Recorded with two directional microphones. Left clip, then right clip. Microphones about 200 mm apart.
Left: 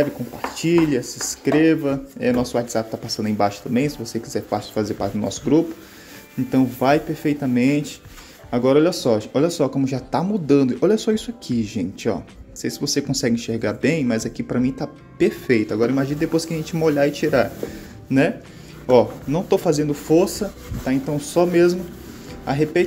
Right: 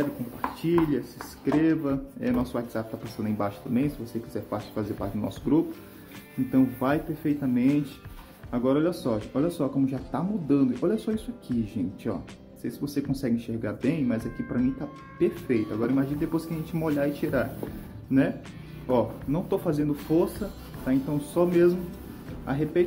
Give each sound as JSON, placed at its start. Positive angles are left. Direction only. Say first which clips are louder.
{"t": 0.6, "sound": "speech", "louder": "left 7 dB", "side_deg": 20}
{"t": 6.5, "sound": "speech", "louder": "left 8 dB", "side_deg": 25}
{"t": 18.9, "sound": "speech", "louder": "left 10 dB", "side_deg": 25}